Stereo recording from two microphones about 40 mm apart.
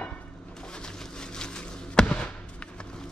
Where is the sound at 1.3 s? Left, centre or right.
Left.